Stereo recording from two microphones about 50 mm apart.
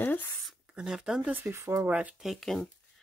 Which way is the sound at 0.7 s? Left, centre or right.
Centre.